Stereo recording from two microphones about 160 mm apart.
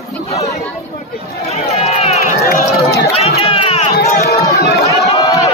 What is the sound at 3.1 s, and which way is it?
Run, 40° left (ahead or behind).